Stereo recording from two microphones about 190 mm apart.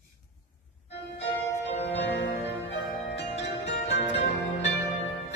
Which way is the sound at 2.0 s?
65° left (ahead or behind).